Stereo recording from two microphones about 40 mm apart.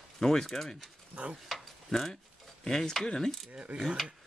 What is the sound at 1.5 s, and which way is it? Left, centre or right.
Mechanisms, centre.